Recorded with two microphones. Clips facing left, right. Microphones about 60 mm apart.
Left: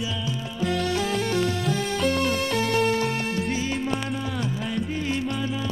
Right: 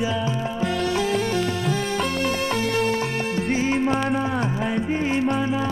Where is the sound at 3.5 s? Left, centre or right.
Right.